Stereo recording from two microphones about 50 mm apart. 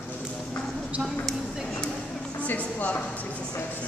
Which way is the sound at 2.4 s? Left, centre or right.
Left.